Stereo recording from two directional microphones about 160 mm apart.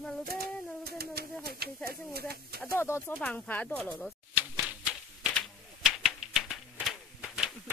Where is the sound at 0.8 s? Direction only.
75° right (ahead or behind).